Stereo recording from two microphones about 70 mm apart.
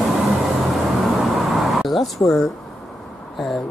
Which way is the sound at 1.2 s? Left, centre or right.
Centre.